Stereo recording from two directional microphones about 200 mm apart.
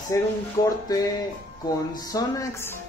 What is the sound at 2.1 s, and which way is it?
Music, 15° left (ahead or behind).